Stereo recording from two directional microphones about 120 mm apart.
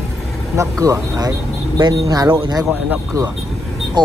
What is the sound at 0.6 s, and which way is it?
Speech, 25° right (ahead or behind).